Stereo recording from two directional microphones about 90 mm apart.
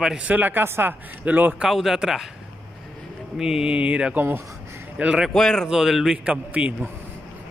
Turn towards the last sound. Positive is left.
turn(degrees=-15)  # may be behind; listen again after turning